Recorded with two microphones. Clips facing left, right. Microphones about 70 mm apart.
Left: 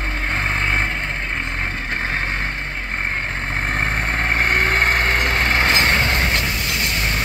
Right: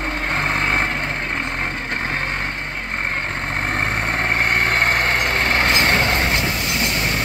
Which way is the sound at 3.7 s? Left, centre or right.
Left.